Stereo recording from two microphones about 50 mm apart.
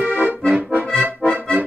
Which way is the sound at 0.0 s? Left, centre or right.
Right.